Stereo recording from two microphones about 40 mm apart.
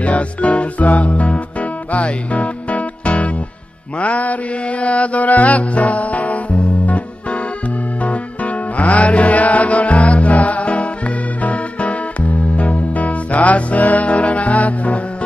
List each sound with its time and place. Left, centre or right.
0.0 s music: left